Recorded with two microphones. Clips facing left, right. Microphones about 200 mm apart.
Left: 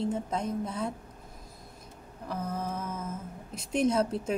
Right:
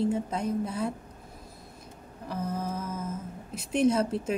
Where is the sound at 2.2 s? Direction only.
30° right (ahead or behind).